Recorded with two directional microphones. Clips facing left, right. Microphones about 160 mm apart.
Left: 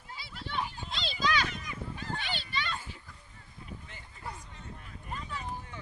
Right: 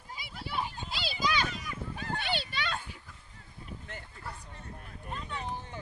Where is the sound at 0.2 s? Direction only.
15° right (ahead or behind).